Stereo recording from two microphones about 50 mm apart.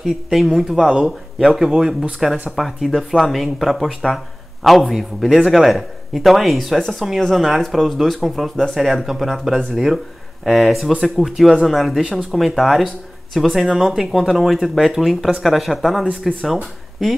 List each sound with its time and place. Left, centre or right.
0.0 s a man's voice: centre
0.7 s speech: centre
2.5 s a man's voice: centre
12.0 s speech: centre
12.3 s a man's voice: centre